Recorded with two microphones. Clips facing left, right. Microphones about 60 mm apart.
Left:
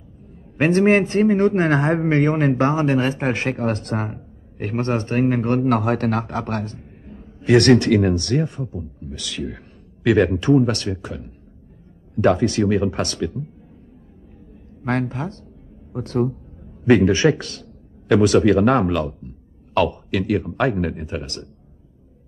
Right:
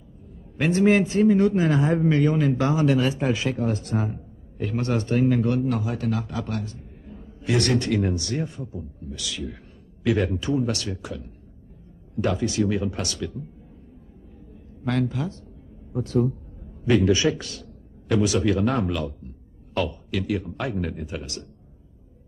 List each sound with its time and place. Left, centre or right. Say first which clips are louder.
0.6 s a man's voice: left 4 dB; left
5.6 s a man's voice: left 7 dB; left
7.5 s speech: left 9 dB; left
12.2 s a man's voice: left 7 dB; left
14.9 s speech: left 2 dB; left
15.9 s a man's voice: left 1 dB; left
19.7 s speech: left 7 dB; left
20.9 s a man's voice: left 4 dB; left